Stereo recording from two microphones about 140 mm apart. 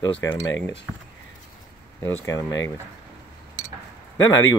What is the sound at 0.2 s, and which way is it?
Speech, 25° left (ahead or behind).